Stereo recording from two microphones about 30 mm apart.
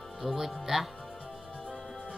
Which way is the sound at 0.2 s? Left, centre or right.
Centre.